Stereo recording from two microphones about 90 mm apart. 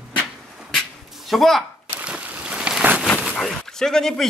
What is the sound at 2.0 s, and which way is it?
Boat, 15° right (ahead or behind).